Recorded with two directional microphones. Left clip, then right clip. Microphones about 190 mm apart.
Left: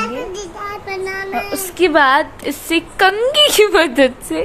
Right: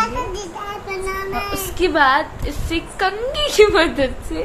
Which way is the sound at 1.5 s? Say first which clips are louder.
Left 4 dB; 60° left (ahead or behind).